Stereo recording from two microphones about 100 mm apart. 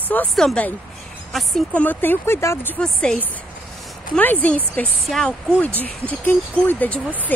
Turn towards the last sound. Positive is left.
turn(degrees=15)  # may be behind; listen again after turning